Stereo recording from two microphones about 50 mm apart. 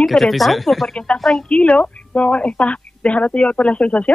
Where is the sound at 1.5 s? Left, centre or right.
Left.